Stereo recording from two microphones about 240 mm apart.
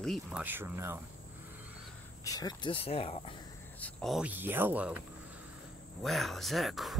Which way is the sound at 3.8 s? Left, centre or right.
Centre.